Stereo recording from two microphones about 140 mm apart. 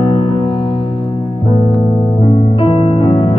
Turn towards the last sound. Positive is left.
turn(degrees=35)  # may be behind; listen again after turning